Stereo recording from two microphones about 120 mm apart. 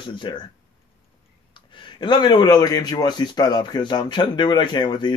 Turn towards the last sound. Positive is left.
turn(degrees=40)  # may be behind; listen again after turning